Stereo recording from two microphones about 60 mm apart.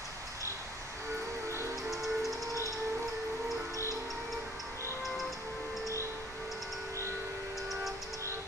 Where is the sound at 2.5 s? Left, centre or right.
Right.